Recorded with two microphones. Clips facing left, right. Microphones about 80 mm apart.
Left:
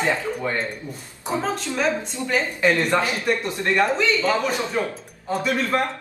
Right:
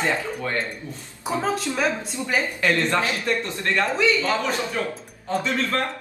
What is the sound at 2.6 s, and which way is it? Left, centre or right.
A man's voice, centre.